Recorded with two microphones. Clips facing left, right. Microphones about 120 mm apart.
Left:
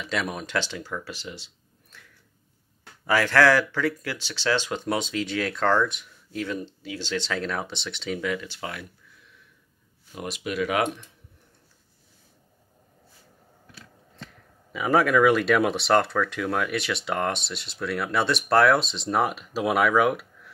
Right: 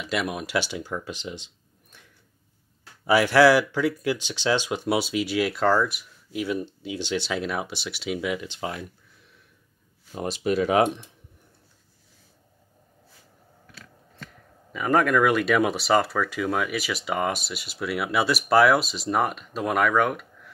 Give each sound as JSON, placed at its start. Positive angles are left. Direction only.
{"t": 0.0, "sound": "speech", "side_deg": -5}
{"t": 3.1, "sound": "speech", "side_deg": -15}
{"t": 10.1, "sound": "speech", "side_deg": -30}
{"t": 14.7, "sound": "speech", "side_deg": 5}